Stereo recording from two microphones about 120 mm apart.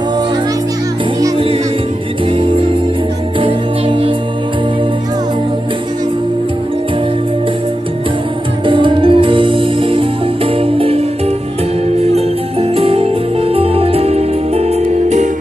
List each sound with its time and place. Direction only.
3.3 s music: 45° right (ahead or behind)
8.6 s music: 45° right (ahead or behind); by 15.2 s 65° right (ahead or behind)